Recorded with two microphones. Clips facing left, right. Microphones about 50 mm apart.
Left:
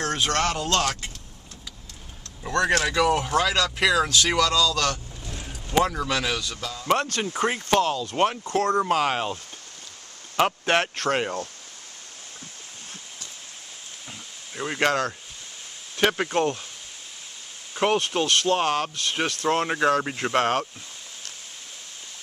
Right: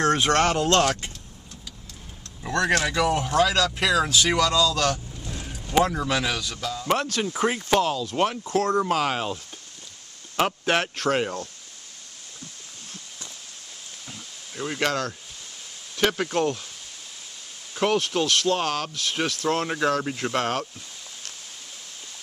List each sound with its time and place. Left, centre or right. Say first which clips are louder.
0.0 s speech: right 4 dB; right
2.6 s speech: left 1 dB; centre
4.1 s speech: even; centre
5.4 s a sound: right 1 dB; centre
6.2 s speech: right 1 dB; centre
8.1 s speech: left 1 dB; centre
10.4 s speech: left 1 dB; centre
14.5 s speech: left 2 dB; centre
17.7 s speech: even; centre